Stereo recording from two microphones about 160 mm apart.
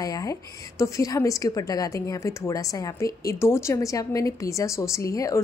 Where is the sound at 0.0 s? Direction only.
20° left (ahead or behind).